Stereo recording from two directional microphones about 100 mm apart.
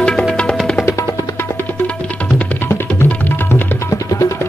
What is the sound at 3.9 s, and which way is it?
Music, 35° left (ahead or behind).